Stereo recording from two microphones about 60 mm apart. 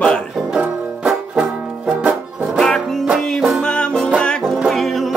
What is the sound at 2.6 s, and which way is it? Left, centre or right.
Music, centre.